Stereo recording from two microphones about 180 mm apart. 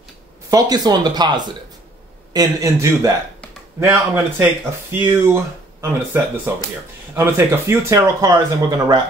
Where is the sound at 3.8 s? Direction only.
10° right (ahead or behind).